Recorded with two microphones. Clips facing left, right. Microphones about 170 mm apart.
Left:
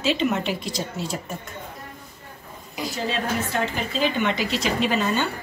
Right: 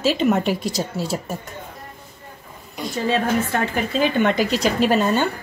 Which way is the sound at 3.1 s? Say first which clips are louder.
Right 8 dB; 50° right (ahead or behind).